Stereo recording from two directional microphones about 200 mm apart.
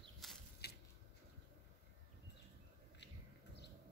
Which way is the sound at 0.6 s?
55° left (ahead or behind).